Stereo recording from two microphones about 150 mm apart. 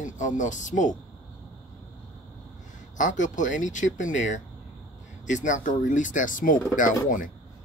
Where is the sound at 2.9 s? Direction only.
55° left (ahead or behind).